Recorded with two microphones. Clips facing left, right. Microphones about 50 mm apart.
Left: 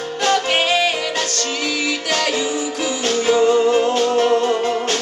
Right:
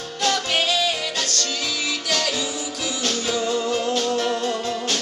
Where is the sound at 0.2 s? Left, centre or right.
Left.